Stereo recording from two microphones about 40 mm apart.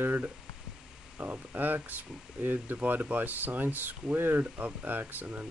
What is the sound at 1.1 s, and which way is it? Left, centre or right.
Speech, right.